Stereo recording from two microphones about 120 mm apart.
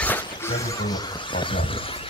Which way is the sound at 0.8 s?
35° left (ahead or behind).